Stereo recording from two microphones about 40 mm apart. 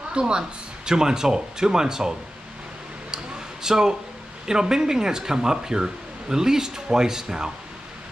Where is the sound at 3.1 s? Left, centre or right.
Centre.